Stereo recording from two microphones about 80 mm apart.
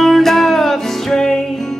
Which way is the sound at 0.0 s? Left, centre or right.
Centre.